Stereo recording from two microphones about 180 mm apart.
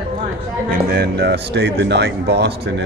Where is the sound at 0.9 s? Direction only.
65° right (ahead or behind).